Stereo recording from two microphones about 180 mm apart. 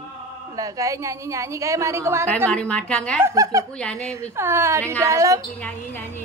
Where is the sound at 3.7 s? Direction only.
5° left (ahead or behind).